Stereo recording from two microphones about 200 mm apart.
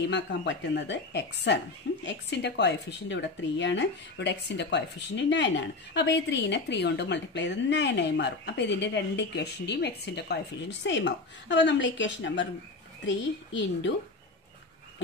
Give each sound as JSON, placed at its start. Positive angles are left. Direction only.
{"t": 0.1, "sound": "speech", "side_deg": 60}